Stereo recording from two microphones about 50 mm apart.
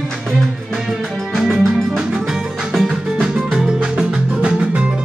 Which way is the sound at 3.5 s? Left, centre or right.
Centre.